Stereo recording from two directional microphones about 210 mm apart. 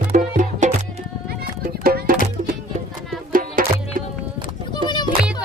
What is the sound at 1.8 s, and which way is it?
Music, 45° right (ahead or behind).